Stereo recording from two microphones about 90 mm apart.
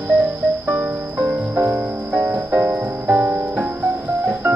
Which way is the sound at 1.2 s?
30° right (ahead or behind).